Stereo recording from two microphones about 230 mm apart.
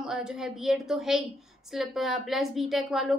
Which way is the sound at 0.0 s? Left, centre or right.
Centre.